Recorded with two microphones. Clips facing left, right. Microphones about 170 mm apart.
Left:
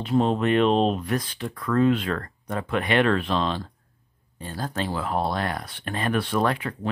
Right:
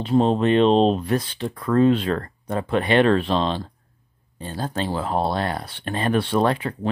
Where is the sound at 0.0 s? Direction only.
30° right (ahead or behind).